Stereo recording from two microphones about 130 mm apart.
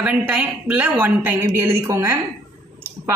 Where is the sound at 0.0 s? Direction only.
10° right (ahead or behind).